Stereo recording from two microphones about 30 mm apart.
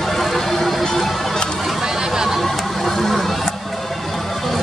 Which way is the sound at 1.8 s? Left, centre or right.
Centre.